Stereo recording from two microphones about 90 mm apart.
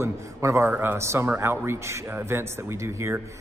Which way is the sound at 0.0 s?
30° right (ahead or behind).